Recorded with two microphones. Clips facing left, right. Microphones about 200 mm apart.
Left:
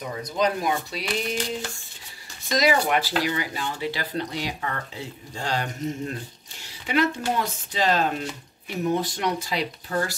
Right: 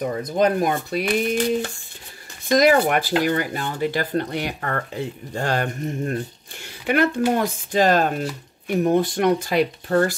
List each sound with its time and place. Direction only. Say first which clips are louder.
0.0 s speech: right 5 dB; 50° right (ahead or behind)